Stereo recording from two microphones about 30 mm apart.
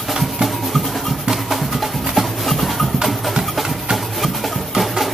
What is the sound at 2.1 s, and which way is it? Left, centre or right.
Clip-clop, centre.